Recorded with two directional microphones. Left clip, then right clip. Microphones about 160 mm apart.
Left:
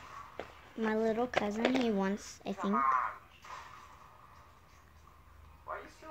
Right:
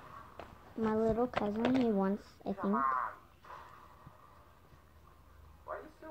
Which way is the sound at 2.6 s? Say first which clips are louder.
Left 2 dB; 25° left (ahead or behind).